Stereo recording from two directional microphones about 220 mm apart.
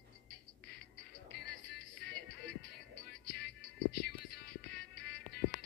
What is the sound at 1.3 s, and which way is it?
Music, 50° left (ahead or behind).